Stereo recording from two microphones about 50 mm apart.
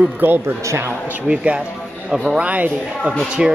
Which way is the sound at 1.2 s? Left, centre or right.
Right.